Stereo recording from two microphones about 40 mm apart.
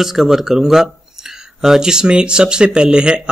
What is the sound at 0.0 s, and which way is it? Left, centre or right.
Speech, centre.